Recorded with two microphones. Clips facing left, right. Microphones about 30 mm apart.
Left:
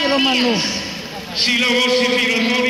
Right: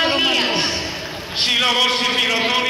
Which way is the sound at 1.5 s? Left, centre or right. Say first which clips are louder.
Left 1 dB; centre.